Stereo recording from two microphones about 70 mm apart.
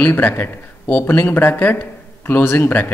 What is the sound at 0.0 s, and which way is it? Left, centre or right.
A man's voice, left.